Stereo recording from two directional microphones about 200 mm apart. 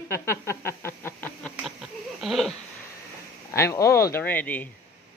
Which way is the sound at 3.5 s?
15° left (ahead or behind).